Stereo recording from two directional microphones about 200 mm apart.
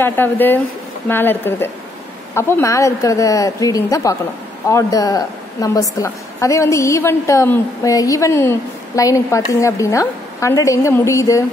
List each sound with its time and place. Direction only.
0.0 s a woman's voice: 10° left (ahead or behind)